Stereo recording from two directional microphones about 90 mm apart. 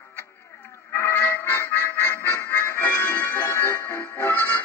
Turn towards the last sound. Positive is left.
turn(degrees=25)  # may be behind; listen again after turning